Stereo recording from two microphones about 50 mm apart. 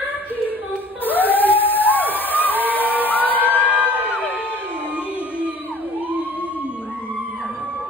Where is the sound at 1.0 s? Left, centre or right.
Left.